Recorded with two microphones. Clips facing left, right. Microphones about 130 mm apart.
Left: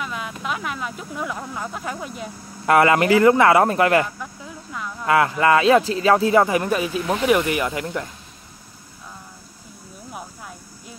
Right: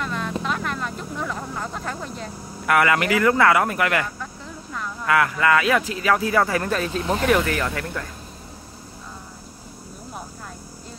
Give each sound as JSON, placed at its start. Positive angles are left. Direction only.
{"t": 0.0, "sound": "vehicle", "side_deg": 5}
{"t": 2.6, "sound": "speech", "side_deg": 30}